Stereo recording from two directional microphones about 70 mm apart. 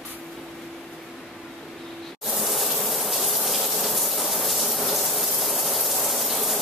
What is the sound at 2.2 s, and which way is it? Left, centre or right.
Gush, centre.